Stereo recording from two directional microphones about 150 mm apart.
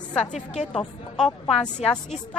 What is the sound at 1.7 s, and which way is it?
Speech, 45° left (ahead or behind).